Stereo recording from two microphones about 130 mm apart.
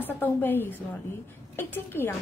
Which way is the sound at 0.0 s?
15° left (ahead or behind).